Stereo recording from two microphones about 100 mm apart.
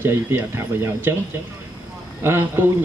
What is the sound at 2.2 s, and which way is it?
Speech, 25° right (ahead or behind).